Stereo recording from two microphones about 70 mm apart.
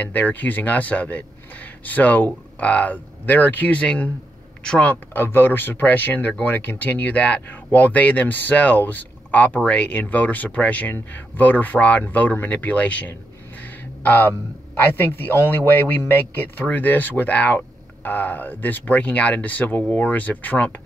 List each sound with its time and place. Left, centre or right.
0.0 s speech: left
5.1 s speech: left
13.6 s a sound: left
14.8 s speech: left